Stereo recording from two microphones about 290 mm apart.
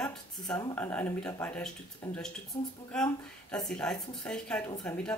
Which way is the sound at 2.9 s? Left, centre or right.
Centre.